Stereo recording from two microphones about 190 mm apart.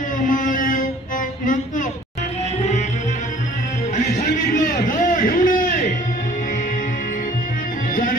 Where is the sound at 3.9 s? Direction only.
45° left (ahead or behind).